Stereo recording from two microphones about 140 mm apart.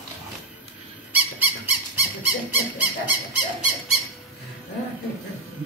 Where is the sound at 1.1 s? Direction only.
10° right (ahead or behind).